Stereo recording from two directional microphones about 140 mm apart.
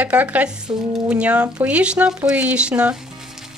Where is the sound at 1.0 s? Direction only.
10° right (ahead or behind).